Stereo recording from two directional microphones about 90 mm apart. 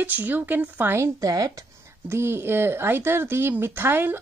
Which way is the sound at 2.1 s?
30° right (ahead or behind).